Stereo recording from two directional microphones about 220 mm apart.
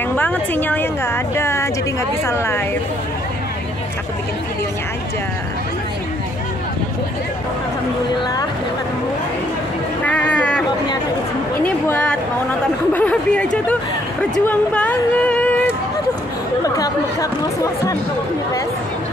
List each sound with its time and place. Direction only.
0.1 s a woman's voice: 10° left (ahead or behind)
10.0 s a sound: 5° left (ahead or behind)
11.6 s chatter: 5° left (ahead or behind)
12.9 s speech: 5° left (ahead or behind)